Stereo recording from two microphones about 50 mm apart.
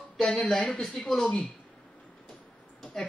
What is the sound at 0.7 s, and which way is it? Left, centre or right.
Speech, centre.